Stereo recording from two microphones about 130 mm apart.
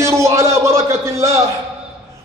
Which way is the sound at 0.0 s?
20° right (ahead or behind).